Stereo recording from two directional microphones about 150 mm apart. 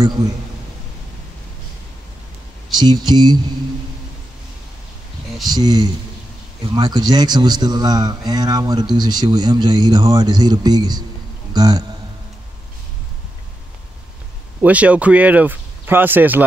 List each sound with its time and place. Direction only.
2.7 s a man's voice: 30° right (ahead or behind)
5.4 s a man's voice: 25° right (ahead or behind)
14.6 s speech: 10° right (ahead or behind)